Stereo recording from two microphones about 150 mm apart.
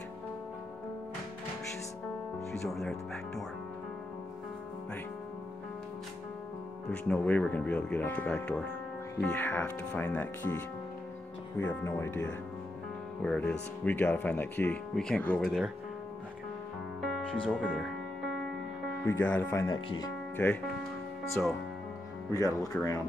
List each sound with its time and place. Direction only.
2.7 s speech: centre (ahead or behind)
6.9 s speech: 10° left (ahead or behind)
15.4 s speech: 5° right (ahead or behind)
17.0 s speech: centre (ahead or behind)
19.0 s speech: 10° left (ahead or behind)
19.7 s speech: 25° left (ahead or behind)
22.3 s speech: 25° left (ahead or behind)